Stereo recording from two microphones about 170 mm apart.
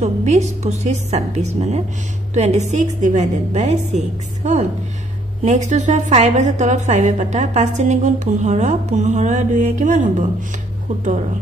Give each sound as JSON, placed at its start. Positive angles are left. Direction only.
{"t": 0.0, "sound": "a woman's voice", "side_deg": -40}